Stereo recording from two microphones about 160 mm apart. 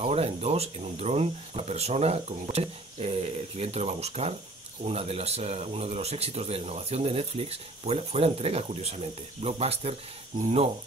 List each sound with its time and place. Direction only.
0.0 s speech: 40° right (ahead or behind)